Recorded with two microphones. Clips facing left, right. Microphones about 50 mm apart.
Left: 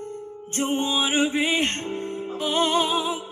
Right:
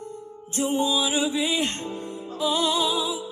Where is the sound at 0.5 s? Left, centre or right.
Left.